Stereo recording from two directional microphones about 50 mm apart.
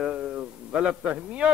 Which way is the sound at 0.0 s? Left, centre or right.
Centre.